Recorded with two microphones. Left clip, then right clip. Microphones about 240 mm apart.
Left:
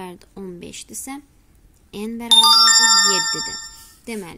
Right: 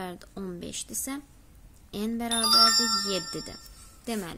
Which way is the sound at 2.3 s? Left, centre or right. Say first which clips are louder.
Left 10 dB; left.